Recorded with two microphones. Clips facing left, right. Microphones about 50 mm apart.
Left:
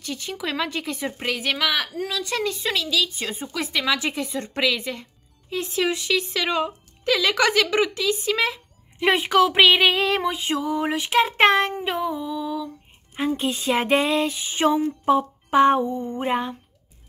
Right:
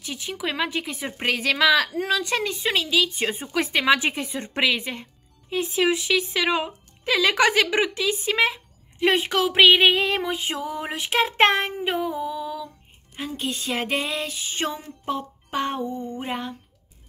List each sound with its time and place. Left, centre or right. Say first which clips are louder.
0.0 s speech: even; centre
1.1 s a woman's voice: right 5 dB; right
5.5 s speech: right 2 dB; centre
9.0 s female singing: left 3 dB; centre
12.2 s a sound: left 1 dB; centre
13.1 s female singing: left 6 dB; centre